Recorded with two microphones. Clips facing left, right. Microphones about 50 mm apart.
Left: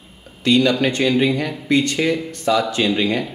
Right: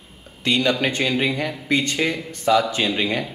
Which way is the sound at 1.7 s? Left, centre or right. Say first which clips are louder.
Left 4 dB; right.